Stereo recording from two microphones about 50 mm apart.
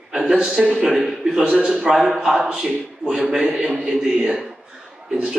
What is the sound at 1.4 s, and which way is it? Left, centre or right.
Speech, centre.